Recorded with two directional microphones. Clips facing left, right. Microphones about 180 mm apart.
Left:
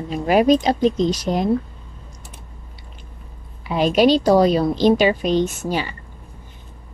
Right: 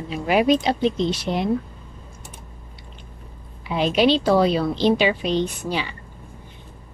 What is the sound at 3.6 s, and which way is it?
A woman's voice, 45° left (ahead or behind).